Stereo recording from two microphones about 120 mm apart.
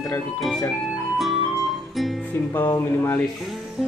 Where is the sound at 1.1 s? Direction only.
Centre (ahead or behind).